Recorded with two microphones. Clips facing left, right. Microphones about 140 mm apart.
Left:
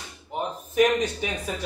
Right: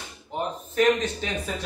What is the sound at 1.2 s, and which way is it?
Speech, 10° left (ahead or behind).